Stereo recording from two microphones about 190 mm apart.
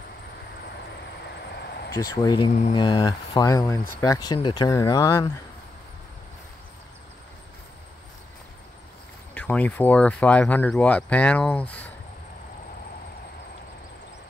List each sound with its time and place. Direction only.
1.5 s a sound: 60° left (ahead or behind)
2.0 s speech: 20° left (ahead or behind)
9.3 s speech: 10° left (ahead or behind)